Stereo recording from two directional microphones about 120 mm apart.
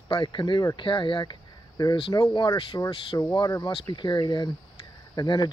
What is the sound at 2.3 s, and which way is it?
Speech, 45° left (ahead or behind).